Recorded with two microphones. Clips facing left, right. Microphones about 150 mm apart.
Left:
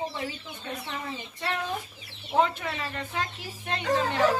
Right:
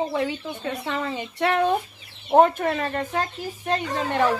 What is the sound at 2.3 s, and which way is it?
Speech, 50° right (ahead or behind).